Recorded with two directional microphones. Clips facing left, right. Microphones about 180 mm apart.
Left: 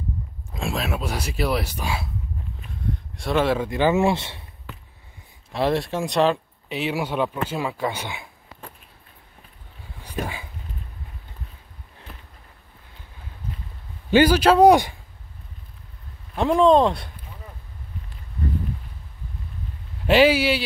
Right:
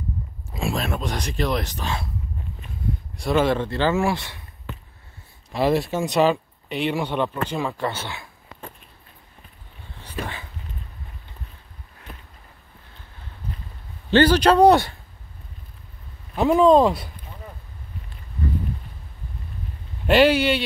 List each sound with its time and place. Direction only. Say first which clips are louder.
0.5 s speech: right 1 dB; centre (ahead or behind)
3.2 s speech: right 1 dB; centre (ahead or behind)
3.6 s speech: left 2 dB; 15° left (ahead or behind)
5.5 s speech: right 2 dB; centre (ahead or behind); by 8.3 s 15° left (ahead or behind)
9.9 s a sound: left 2 dB; 10° left (ahead or behind)
14.1 s speech: even; 10° left (ahead or behind)
16.3 s speech: right 1 dB; 5° right (ahead or behind)
20.1 s speech: even; 5° left (ahead or behind)